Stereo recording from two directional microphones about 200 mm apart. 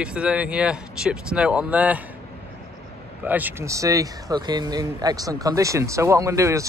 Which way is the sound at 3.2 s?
10° right (ahead or behind).